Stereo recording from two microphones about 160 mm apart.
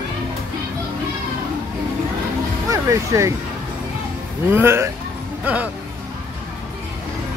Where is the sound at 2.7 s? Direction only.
20° right (ahead or behind).